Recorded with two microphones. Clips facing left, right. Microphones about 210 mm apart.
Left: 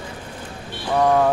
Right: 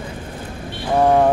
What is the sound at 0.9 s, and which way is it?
Speech, 30° right (ahead or behind).